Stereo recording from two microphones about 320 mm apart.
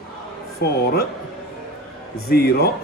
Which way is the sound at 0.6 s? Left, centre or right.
Left.